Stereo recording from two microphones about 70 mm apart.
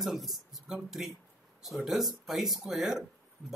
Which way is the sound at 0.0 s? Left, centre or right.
Centre.